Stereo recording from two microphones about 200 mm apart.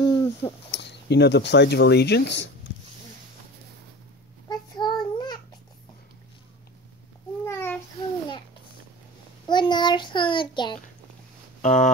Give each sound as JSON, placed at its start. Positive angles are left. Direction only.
{"t": 0.0, "sound": "a sound", "side_deg": 20}
{"t": 0.7, "sound": "speech", "side_deg": 60}
{"t": 4.5, "sound": "child singing", "side_deg": 20}
{"t": 7.4, "sound": "child singing", "side_deg": 10}
{"t": 9.5, "sound": "a child's voice", "side_deg": 20}
{"t": 11.6, "sound": "a sound", "side_deg": 40}